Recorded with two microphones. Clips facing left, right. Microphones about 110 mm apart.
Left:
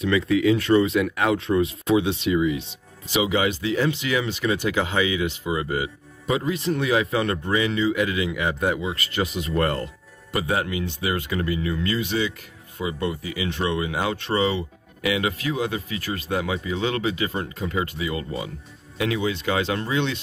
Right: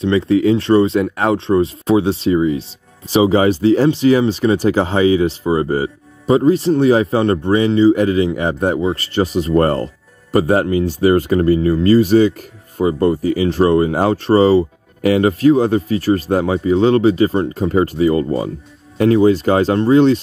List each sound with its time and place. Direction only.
0.0 s speech: 30° right (ahead or behind)